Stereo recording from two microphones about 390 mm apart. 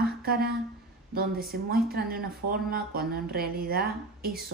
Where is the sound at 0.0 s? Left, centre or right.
Right.